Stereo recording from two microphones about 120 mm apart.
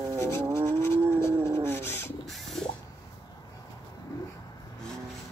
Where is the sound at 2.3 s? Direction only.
Centre (ahead or behind).